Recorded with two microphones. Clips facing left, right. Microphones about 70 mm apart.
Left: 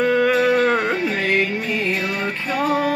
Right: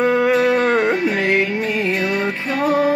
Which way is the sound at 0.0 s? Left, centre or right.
Centre.